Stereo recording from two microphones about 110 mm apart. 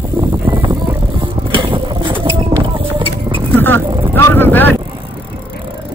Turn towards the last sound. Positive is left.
turn(degrees=15)  # may be behind; listen again after turning